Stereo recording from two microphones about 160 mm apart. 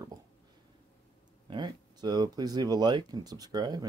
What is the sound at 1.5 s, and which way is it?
Speech, 25° right (ahead or behind).